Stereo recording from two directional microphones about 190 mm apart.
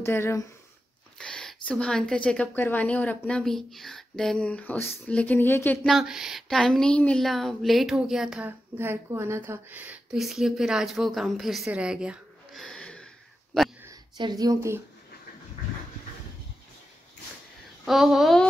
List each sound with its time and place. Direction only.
0.0 s speech: 15° left (ahead or behind)
5.9 s speech: centre (ahead or behind)
13.8 s speech: 20° right (ahead or behind)
17.8 s speech: centre (ahead or behind)